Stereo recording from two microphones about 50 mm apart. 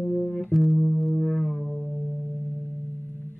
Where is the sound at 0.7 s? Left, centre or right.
Centre.